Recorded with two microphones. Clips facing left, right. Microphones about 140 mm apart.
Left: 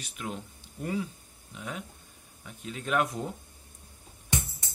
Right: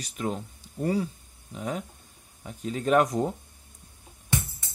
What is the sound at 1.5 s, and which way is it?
Speech, 35° right (ahead or behind).